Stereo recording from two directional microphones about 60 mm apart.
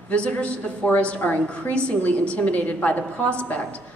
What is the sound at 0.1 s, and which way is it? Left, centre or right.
A woman's voice, centre.